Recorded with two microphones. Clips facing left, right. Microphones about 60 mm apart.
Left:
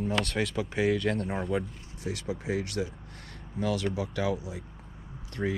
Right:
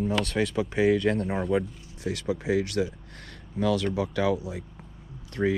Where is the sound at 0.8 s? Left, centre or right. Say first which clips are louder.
Right 4 dB; right.